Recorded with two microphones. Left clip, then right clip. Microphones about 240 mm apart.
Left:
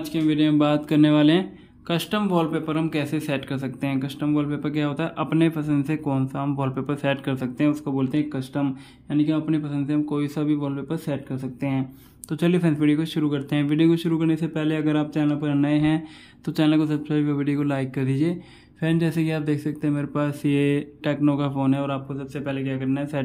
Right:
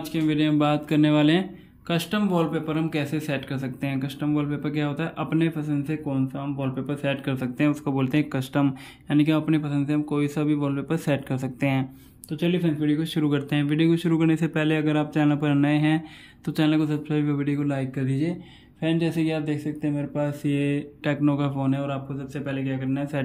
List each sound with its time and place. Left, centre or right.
0.1 s a man's voice: centre
6.0 s a man's voice: centre
12.3 s speech: centre
12.8 s a man's voice: centre